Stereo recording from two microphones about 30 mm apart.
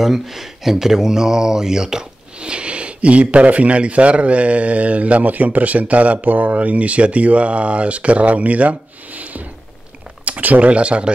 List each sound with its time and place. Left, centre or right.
0.0 s speech: centre; by 5.2 s right
5.2 s a man's voice: right
6.2 s speech: right
10.4 s a man's voice: right
10.7 s speech: right